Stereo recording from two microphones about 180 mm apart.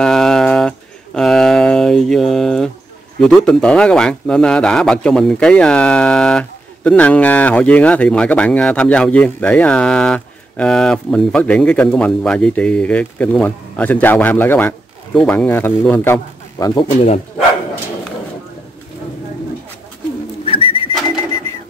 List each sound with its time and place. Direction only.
0.0 s a sound: centre (ahead or behind)
3.2 s a man's voice: 5° left (ahead or behind); by 16.8 s 20° left (ahead or behind)
16.9 s speech: 35° left (ahead or behind)
20.4 s bird: 30° left (ahead or behind)